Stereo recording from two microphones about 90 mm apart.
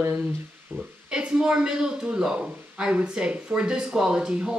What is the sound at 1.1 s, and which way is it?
Speech, 10° right (ahead or behind).